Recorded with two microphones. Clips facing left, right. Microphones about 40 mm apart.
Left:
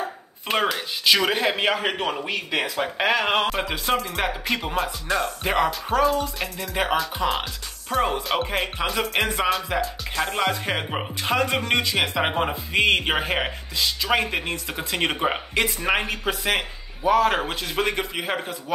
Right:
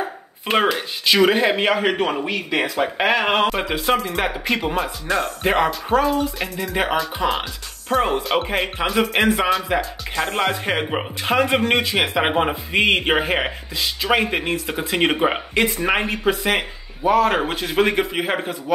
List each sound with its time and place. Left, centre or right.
0.5 s speech: right
1.0 s speech: centre
5.4 s speech: centre
5.7 s speech: centre
10.4 s speech: centre